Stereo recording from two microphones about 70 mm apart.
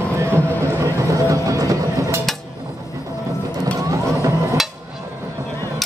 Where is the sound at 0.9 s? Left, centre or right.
Right.